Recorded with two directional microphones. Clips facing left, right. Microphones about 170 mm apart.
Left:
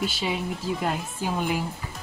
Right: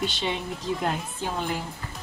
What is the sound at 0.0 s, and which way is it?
Speech, 5° left (ahead or behind).